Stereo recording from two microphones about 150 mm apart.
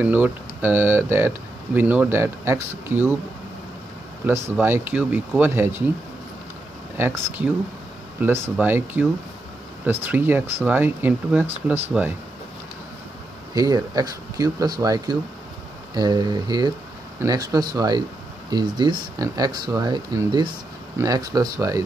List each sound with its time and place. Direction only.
0.0 s speech: 10° right (ahead or behind)
4.3 s speech: 15° right (ahead or behind)
7.0 s speech: 15° right (ahead or behind)
13.6 s speech: 25° right (ahead or behind)